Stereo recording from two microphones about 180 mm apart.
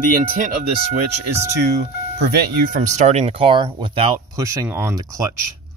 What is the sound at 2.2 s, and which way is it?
Speech, 60° right (ahead or behind).